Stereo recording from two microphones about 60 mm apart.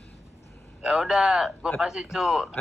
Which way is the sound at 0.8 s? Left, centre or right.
Centre.